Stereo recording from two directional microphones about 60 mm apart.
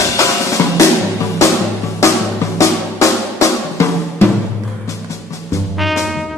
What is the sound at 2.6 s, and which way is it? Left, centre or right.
Drum, left.